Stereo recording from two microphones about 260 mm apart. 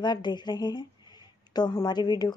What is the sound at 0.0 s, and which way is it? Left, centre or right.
A woman's voice, centre.